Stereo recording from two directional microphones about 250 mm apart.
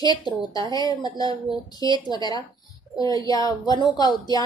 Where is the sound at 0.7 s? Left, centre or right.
Centre.